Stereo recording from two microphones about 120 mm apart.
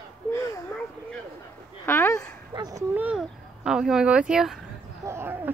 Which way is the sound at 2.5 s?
35° right (ahead or behind).